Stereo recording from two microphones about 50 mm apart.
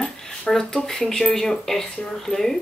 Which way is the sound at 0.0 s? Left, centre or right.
Centre.